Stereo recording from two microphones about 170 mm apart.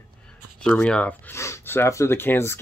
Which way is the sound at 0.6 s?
5° left (ahead or behind).